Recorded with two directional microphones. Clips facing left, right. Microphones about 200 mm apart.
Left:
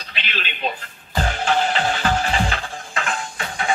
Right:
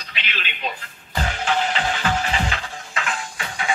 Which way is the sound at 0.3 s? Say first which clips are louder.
Left 4 dB; 35° left (ahead or behind).